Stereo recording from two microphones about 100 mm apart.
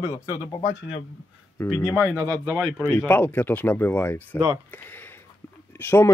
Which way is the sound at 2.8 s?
15° left (ahead or behind).